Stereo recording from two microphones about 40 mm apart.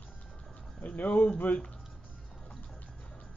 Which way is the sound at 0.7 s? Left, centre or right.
Left.